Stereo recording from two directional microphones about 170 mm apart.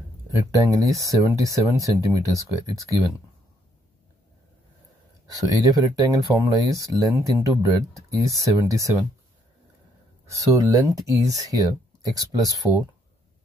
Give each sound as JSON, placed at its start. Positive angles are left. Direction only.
{"t": 0.6, "sound": "speech", "side_deg": -20}
{"t": 5.3, "sound": "speech", "side_deg": -20}
{"t": 10.3, "sound": "speech", "side_deg": -20}